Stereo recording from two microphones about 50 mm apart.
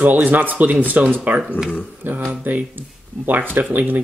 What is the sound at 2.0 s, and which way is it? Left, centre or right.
Speech, right.